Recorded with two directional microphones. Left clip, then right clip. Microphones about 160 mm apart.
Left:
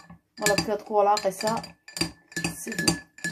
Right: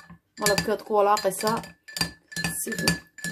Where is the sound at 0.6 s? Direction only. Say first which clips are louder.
Right 1 dB; 45° right (ahead or behind).